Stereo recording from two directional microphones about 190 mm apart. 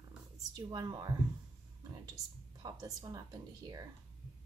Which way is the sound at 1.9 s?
20° right (ahead or behind).